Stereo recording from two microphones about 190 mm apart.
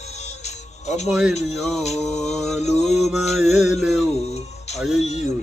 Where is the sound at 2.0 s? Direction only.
35° left (ahead or behind).